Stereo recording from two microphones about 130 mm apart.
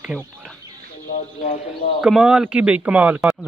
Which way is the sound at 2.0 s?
5° right (ahead or behind).